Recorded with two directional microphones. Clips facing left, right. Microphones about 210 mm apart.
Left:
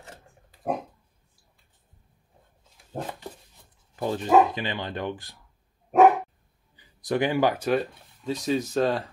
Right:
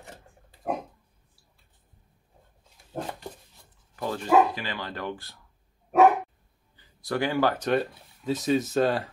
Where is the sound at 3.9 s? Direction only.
20° left (ahead or behind).